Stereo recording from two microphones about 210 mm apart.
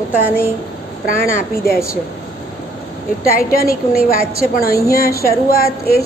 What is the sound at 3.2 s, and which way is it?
A woman's voice, 45° left (ahead or behind).